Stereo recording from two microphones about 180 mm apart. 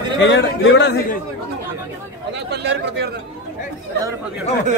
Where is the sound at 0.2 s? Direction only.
90° left.